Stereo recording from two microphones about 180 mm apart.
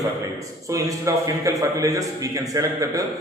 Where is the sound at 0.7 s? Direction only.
20° right (ahead or behind).